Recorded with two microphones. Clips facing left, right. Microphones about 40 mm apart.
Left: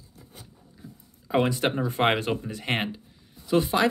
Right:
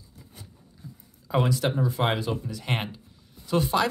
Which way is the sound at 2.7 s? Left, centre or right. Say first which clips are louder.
Left 3 dB; centre.